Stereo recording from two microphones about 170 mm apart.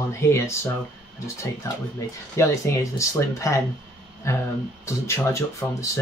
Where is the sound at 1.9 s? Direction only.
15° left (ahead or behind).